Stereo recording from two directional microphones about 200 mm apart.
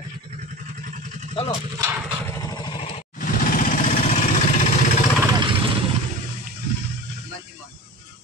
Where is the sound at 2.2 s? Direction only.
15° left (ahead or behind).